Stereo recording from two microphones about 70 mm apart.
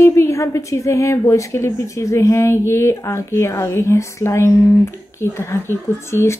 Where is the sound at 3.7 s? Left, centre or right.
Left.